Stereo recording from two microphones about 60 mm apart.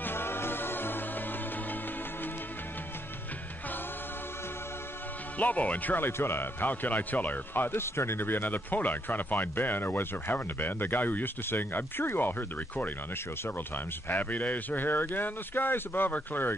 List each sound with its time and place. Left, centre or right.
0.0 s music: left
5.4 s a man's voice: left
14.0 s a man's voice: left